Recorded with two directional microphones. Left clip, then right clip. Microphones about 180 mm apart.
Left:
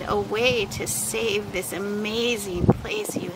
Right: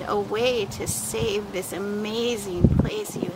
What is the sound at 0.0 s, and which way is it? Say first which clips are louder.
Speech: left 1 dB; centre (ahead or behind).